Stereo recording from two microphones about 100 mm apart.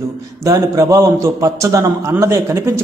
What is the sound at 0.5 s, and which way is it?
A man's voice, 35° right (ahead or behind).